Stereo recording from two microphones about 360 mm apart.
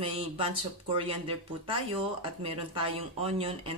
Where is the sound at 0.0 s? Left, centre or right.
Centre.